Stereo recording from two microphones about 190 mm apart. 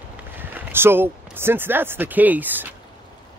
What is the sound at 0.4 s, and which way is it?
Speech, 10° right (ahead or behind).